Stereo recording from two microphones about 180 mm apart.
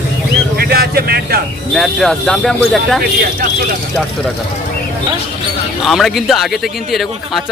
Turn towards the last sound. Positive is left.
turn(degrees=0)  # may be behind; listen again after turning